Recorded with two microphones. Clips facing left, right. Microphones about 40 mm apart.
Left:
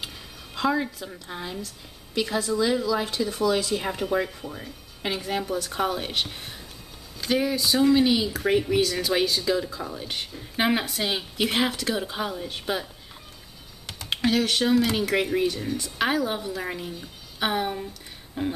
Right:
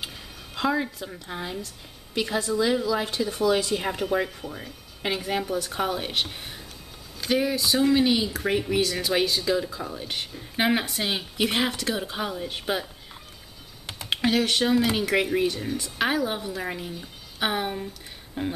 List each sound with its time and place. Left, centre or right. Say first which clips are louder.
0.6 s speech: left 1 dB; centre
13.8 s speech: even; centre